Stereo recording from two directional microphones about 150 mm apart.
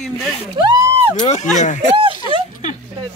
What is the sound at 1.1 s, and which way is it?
Speech, 50° left (ahead or behind).